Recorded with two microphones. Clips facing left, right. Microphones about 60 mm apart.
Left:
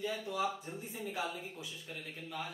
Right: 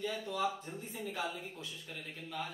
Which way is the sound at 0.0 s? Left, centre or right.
Centre.